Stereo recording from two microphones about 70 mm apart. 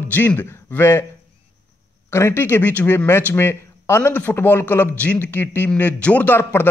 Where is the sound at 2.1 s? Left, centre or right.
Left; by 6.4 s centre.